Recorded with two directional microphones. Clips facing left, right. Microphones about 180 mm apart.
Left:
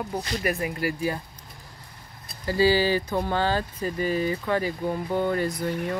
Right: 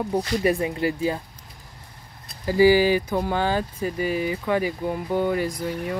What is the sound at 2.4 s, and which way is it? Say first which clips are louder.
Speech: right 5 dB; 15° right (ahead or behind).